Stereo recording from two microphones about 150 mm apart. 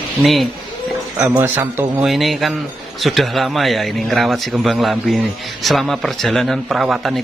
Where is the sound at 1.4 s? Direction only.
15° right (ahead or behind).